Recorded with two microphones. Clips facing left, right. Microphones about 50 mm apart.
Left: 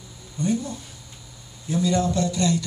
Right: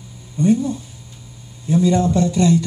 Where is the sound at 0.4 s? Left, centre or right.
Right.